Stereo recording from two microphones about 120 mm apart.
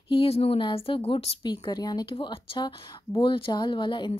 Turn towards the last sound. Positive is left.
turn(degrees=40)  # may be behind; listen again after turning